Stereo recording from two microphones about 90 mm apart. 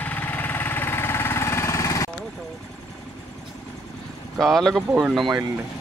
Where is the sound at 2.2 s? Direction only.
5° left (ahead or behind).